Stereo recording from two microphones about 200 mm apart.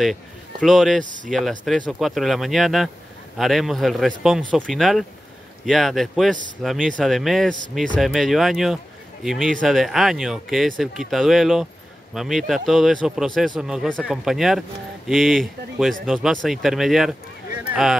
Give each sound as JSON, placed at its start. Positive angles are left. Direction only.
{"t": 0.0, "sound": "a man's voice", "side_deg": 0}
{"t": 1.0, "sound": "speech", "side_deg": -40}
{"t": 1.6, "sound": "speech", "side_deg": 5}